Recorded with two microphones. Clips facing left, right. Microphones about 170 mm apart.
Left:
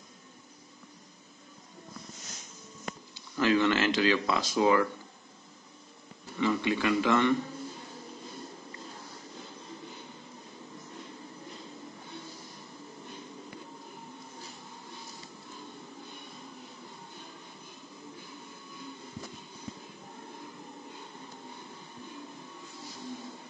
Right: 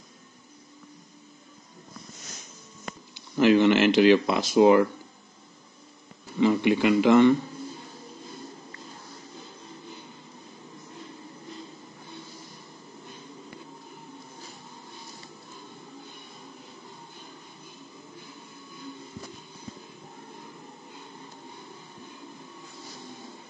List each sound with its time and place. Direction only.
3.3 s speech: 20° right (ahead or behind)
6.4 s speech: 20° right (ahead or behind)